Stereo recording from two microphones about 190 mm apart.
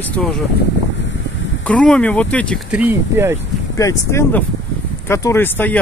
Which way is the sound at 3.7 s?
15° left (ahead or behind).